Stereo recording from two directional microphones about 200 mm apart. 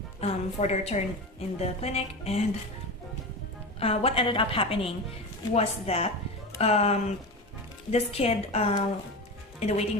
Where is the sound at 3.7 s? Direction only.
30° left (ahead or behind).